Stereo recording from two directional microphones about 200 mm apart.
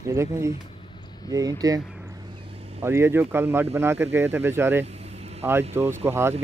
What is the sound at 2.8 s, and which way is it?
Speech, 10° right (ahead or behind).